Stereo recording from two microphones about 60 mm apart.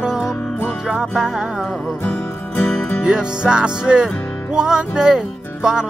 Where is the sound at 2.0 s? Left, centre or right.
Left.